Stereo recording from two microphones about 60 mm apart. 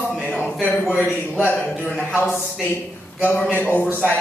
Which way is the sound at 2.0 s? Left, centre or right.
Left.